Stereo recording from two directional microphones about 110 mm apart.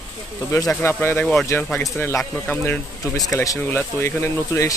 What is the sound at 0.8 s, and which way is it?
Speech, 20° left (ahead or behind).